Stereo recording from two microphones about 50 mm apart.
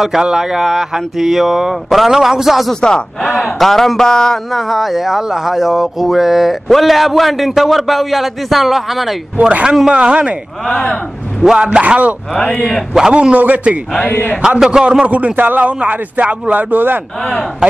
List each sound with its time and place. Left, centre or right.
0.2 s speech: centre
2.7 s speech: centre
4.5 s speech: centre
9.5 s a man's voice: right
11.4 s a man's voice: centre
12.4 s speech: left
12.9 s a man's voice: centre
14.0 s a man's voice: left
14.6 s speech: centre
15.0 s a man's voice: right
17.2 s speech: centre